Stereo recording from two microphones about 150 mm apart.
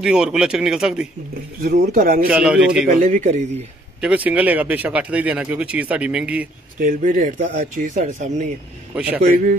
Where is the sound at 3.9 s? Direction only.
10° right (ahead or behind).